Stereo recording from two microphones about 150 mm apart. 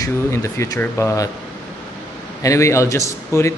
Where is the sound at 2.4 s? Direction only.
20° left (ahead or behind).